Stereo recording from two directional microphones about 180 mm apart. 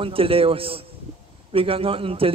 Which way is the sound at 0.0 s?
30° right (ahead or behind).